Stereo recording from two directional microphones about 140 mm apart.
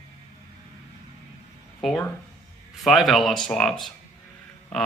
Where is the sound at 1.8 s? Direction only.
Centre (ahead or behind).